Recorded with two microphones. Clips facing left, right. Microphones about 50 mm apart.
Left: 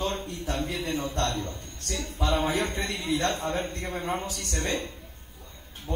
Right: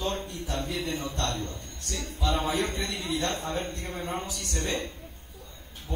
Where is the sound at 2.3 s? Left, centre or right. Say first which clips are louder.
Left 2 dB; left.